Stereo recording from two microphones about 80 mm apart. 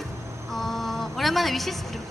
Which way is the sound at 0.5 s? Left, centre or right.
Centre.